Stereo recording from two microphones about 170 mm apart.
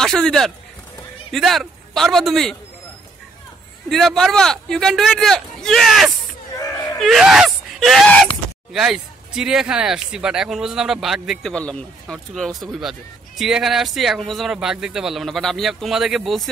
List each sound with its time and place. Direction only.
0.0 s a man's voice: 5° left (ahead or behind)
3.9 s speech: centre (ahead or behind)
6.5 s a sound: 20° left (ahead or behind)
7.0 s speech: centre (ahead or behind)